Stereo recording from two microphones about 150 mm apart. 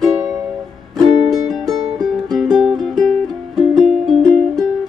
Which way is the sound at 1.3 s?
Centre (ahead or behind).